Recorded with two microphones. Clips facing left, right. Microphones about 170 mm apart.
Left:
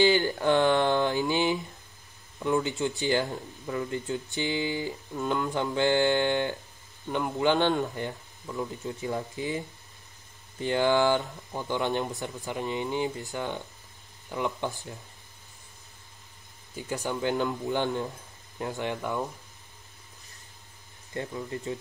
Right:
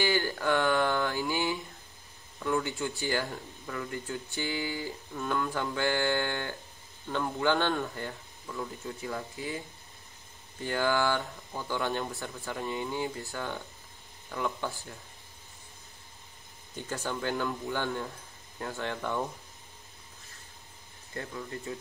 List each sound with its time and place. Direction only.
0.0 s mantra: 20° left (ahead or behind)
2.4 s speech: 20° left (ahead or behind)
10.6 s speech: 20° left (ahead or behind)
16.8 s speech: 15° left (ahead or behind)
21.1 s speech: 20° left (ahead or behind)